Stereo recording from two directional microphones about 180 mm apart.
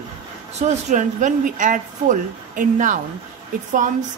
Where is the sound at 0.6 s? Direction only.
40° right (ahead or behind).